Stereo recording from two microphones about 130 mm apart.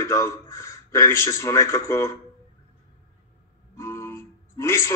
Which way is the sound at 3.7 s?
20° left (ahead or behind).